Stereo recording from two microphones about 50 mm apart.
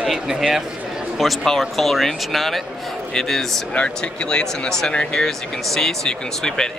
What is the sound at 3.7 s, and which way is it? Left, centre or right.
Speech, left.